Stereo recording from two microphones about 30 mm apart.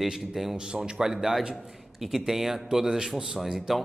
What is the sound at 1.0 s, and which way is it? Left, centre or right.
Speech, centre.